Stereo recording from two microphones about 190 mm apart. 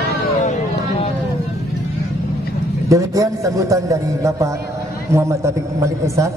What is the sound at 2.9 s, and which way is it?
A man's voice, 15° right (ahead or behind).